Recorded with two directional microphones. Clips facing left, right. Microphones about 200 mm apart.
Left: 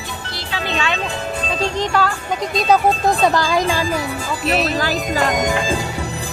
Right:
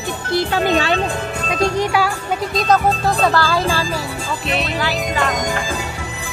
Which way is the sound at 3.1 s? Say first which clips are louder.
Even; 15° left (ahead or behind).